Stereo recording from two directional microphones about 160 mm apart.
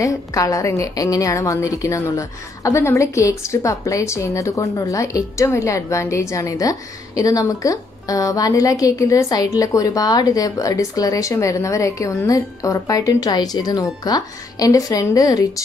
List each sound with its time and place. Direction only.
0.0 s a woman's voice: 20° left (ahead or behind)